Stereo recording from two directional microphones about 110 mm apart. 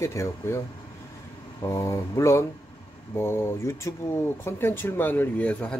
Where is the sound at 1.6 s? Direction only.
25° left (ahead or behind).